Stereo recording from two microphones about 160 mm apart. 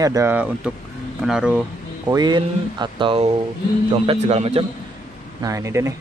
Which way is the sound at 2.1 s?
25° right (ahead or behind).